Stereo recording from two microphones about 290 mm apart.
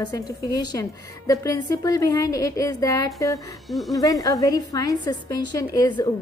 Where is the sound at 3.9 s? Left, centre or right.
Centre.